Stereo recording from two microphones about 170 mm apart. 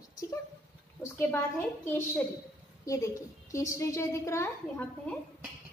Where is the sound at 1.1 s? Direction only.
10° left (ahead or behind).